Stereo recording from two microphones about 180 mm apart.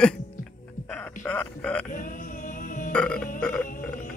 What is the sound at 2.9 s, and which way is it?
Burping, 5° left (ahead or behind).